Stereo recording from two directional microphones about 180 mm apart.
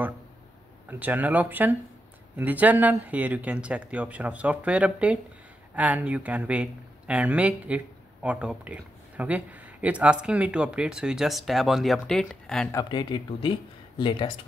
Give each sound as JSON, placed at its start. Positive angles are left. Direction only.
{"t": 0.8, "sound": "speech", "side_deg": -10}
{"t": 12.7, "sound": "speech", "side_deg": 25}